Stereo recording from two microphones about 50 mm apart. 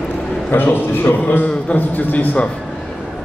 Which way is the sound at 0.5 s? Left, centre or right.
Left.